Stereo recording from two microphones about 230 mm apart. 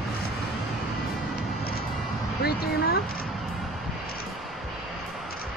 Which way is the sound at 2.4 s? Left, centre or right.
Left.